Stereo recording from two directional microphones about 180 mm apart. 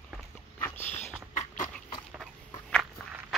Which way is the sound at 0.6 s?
10° left (ahead or behind).